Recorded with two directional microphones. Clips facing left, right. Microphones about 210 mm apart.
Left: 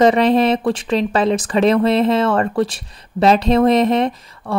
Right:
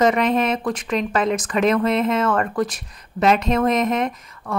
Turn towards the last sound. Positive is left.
turn(degrees=30)  # may be behind; listen again after turning